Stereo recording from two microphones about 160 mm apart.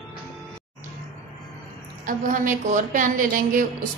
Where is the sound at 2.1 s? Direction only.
55° right (ahead or behind).